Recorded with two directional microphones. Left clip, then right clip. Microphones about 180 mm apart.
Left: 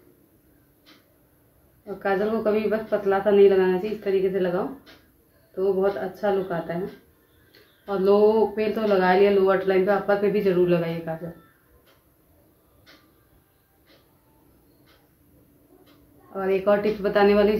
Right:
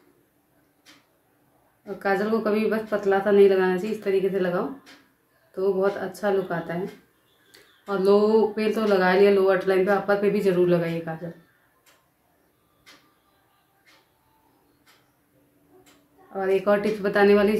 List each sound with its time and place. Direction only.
2.0 s speech: 15° right (ahead or behind)
5.5 s speech: 15° right (ahead or behind)
7.8 s speech: 15° right (ahead or behind)
16.3 s speech: 10° right (ahead or behind)